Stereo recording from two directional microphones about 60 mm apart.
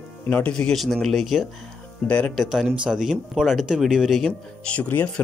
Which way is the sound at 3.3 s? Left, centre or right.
Centre.